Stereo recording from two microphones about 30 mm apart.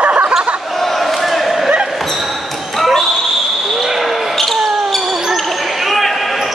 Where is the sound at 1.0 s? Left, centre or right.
Centre.